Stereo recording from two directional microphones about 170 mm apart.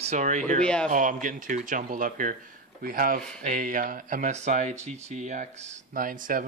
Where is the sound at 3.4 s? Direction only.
50° right (ahead or behind).